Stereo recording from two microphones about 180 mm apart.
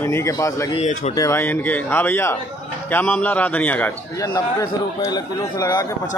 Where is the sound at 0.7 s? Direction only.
40° left (ahead or behind).